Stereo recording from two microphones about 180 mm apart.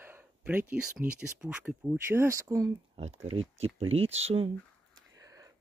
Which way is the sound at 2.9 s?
35° right (ahead or behind).